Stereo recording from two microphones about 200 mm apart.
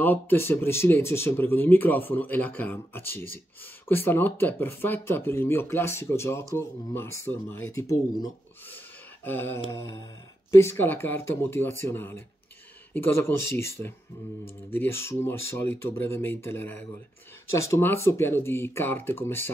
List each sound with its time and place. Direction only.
0.0 s speech: 10° left (ahead or behind)